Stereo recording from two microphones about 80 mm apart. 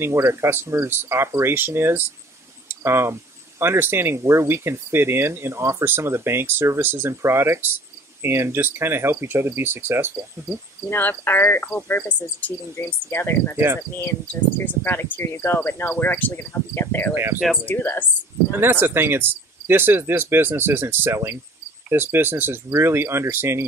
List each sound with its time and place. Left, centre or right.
0.0 s speech: right
10.9 s speech: left
14.8 s speech: left
18.6 s speech: right